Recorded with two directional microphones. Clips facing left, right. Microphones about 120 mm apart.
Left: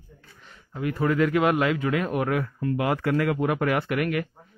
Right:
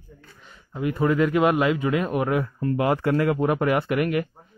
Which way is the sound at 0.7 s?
20° right (ahead or behind).